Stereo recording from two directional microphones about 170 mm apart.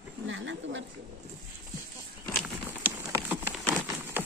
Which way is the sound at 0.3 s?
90° right.